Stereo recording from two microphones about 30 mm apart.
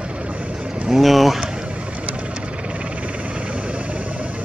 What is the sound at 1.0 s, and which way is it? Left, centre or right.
Speech, centre.